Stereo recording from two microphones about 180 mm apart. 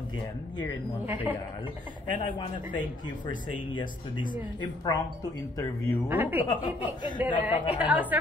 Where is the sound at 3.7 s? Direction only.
25° left (ahead or behind).